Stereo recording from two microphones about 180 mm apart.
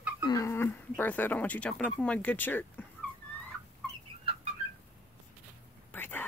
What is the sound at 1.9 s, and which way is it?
Speech, 10° left (ahead or behind).